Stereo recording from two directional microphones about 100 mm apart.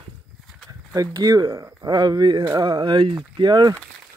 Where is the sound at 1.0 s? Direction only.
40° right (ahead or behind).